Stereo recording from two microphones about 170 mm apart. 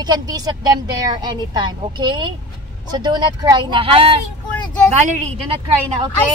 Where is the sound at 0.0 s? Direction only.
25° right (ahead or behind).